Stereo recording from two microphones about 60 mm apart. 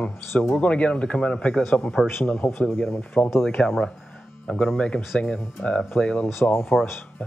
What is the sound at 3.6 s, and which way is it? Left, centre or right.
Speech, centre.